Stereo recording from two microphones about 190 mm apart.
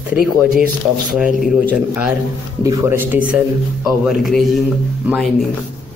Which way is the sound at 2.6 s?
15° right (ahead or behind).